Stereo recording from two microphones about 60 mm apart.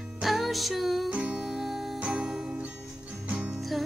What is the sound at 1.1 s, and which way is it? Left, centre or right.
Music, centre.